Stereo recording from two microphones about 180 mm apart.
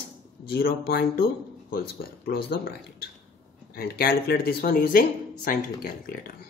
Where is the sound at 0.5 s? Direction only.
60° left (ahead or behind).